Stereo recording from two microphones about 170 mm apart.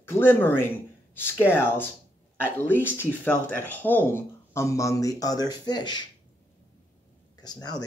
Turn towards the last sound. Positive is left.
turn(degrees=25)  # may be behind; listen again after turning